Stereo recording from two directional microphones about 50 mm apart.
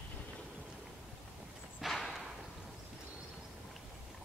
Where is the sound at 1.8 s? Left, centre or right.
Centre.